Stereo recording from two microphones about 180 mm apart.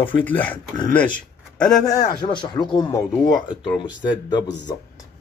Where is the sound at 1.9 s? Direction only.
20° left (ahead or behind).